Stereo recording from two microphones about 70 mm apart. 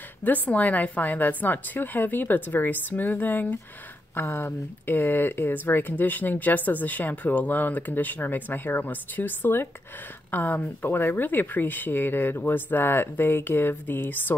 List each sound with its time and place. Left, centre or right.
0.2 s speech: left